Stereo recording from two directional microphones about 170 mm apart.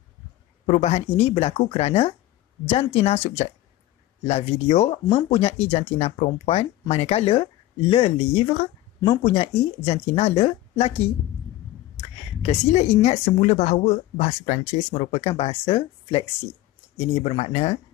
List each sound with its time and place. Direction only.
0.7 s a woman's voice: 40° left (ahead or behind)
12.4 s a woman's voice: 40° left (ahead or behind)